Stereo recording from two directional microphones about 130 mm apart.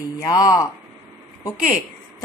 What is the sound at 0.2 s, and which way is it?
Speech, 25° left (ahead or behind).